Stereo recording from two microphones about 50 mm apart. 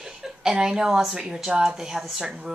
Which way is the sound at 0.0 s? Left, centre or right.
Centre.